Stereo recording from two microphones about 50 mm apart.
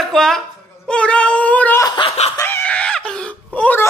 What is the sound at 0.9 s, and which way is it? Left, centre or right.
Speech, left.